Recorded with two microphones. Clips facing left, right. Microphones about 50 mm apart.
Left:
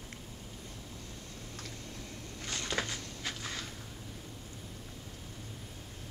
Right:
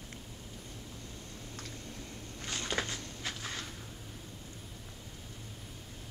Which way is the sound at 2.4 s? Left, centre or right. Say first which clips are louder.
Even; centre.